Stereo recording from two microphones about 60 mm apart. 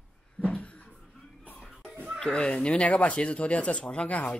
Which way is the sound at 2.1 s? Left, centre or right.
Centre.